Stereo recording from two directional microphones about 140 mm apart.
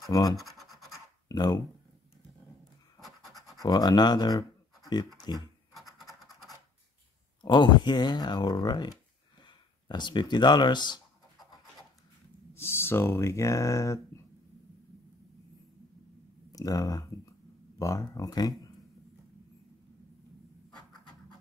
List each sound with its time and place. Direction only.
0.1 s speech: 30° left (ahead or behind)
0.4 s scratch: centre (ahead or behind)
1.3 s speech: 30° left (ahead or behind)
3.6 s speech: 30° left (ahead or behind)
5.8 s scratch: centre (ahead or behind)
7.4 s speech: 30° left (ahead or behind)
12.5 s speech: 15° left (ahead or behind)
16.5 s speech: 25° left (ahead or behind)